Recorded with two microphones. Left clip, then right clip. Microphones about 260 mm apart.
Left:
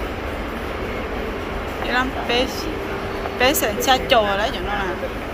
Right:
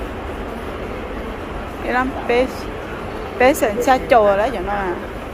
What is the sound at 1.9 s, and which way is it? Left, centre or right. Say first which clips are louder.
Speech: right 3 dB; right.